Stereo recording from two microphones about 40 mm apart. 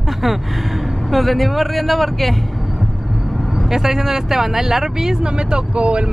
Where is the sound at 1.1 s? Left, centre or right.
Centre.